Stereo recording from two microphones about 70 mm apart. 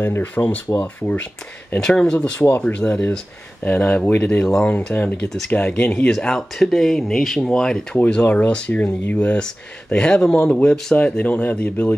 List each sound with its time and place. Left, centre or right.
0.0 s speech: left
1.8 s speech: centre
4.9 s speech: left
8.0 s speech: left
9.9 s speech: centre